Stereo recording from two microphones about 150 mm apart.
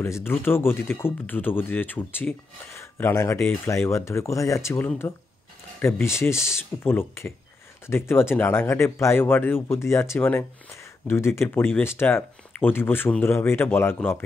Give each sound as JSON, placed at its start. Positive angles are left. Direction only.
{"t": 0.0, "sound": "speech", "side_deg": 15}